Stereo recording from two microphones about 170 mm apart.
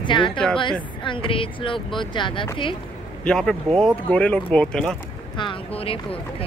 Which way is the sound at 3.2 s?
5° left (ahead or behind).